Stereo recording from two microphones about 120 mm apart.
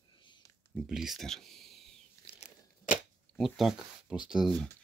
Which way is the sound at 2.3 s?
90° left.